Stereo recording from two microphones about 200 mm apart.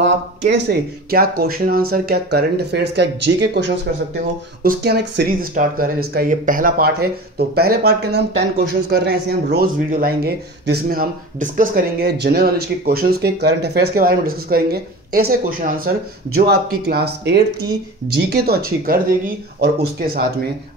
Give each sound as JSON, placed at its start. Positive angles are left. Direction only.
{"t": 0.0, "sound": "speech", "side_deg": -55}